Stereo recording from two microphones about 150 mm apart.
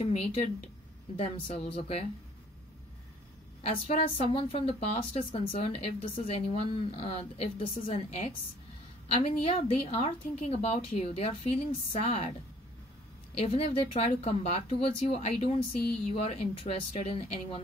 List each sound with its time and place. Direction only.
0.0 s a woman's voice: 40° left (ahead or behind)
3.6 s a woman's voice: 40° left (ahead or behind)
7.8 s a woman's voice: 55° left (ahead or behind)
9.1 s a woman's voice: 40° left (ahead or behind)
13.4 s a woman's voice: 40° left (ahead or behind)